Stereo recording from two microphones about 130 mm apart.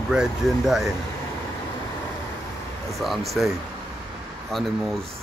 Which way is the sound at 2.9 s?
Centre (ahead or behind).